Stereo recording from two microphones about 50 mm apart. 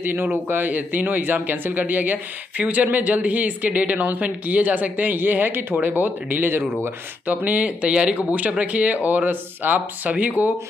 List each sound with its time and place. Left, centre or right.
0.0 s a man's voice: right
5.9 s a man's voice: right